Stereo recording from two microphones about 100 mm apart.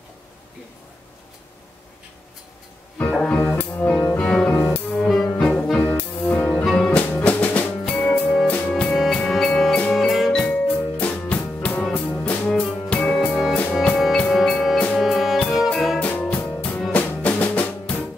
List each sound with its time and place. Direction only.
3.0 s music: 15° left (ahead or behind)
4.3 s cello: 5° left (ahead or behind)
4.9 s music: 5° left (ahead or behind)
5.8 s music: 20° left (ahead or behind)
7.1 s drum: 15° left (ahead or behind)
7.9 s music: 5° left (ahead or behind)
10.4 s music: 10° left (ahead or behind)
13.3 s music: centre (ahead or behind)
16.0 s music: 15° left (ahead or behind)